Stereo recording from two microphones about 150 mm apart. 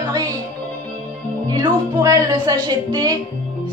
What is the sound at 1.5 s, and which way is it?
A woman's voice, 25° right (ahead or behind).